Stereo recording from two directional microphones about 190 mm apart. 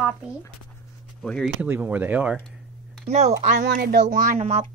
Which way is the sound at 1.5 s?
10° right (ahead or behind).